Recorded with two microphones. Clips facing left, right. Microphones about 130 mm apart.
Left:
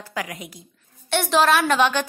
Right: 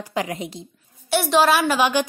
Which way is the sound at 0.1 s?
25° right (ahead or behind).